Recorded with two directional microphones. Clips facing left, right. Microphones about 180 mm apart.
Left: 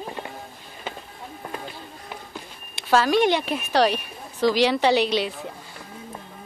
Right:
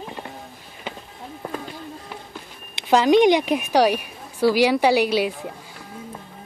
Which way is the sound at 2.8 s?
20° right (ahead or behind).